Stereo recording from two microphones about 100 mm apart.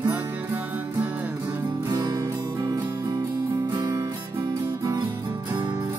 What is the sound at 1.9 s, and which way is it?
Music, 40° right (ahead or behind).